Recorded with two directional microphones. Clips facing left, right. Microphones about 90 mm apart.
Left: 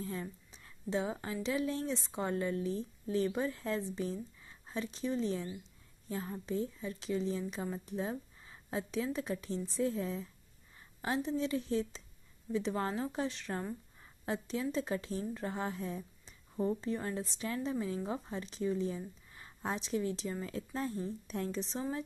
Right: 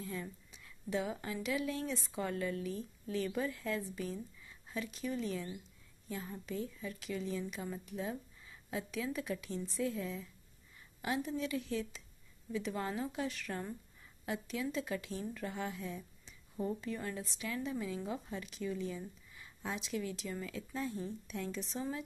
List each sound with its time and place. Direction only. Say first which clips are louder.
0.0 s a woman's voice: left 2 dB; 35° left (ahead or behind)